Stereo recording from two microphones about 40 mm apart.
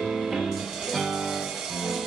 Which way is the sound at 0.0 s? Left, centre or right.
Centre.